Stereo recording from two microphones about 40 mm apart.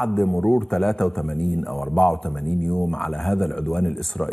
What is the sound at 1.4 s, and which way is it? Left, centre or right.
Speech, centre.